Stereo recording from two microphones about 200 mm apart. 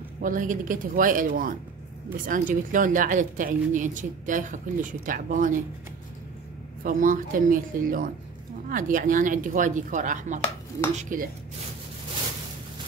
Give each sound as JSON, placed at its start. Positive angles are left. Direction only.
{"t": 0.2, "sound": "speech", "side_deg": -40}
{"t": 6.8, "sound": "speech", "side_deg": -40}